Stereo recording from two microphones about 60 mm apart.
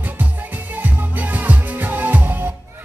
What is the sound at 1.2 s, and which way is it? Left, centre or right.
Music, right.